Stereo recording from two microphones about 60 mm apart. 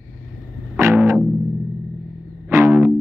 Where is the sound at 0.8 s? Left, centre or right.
Right.